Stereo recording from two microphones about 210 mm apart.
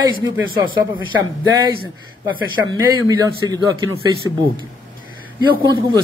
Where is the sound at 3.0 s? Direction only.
15° right (ahead or behind).